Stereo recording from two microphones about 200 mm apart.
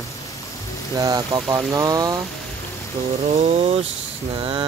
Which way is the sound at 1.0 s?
20° right (ahead or behind).